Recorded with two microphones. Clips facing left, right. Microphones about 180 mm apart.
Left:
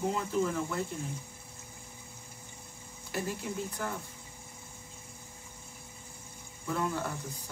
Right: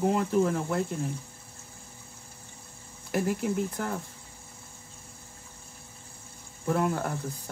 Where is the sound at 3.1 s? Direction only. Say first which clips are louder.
Right 8 dB; 55° right (ahead or behind).